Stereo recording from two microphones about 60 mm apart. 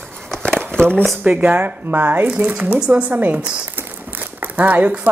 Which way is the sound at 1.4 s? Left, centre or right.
Right.